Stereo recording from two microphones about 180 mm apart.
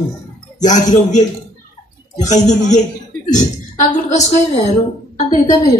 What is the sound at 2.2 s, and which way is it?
Music, 40° left (ahead or behind).